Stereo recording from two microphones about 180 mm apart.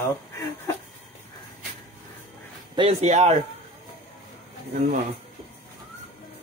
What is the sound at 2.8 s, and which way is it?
Speech, 35° right (ahead or behind).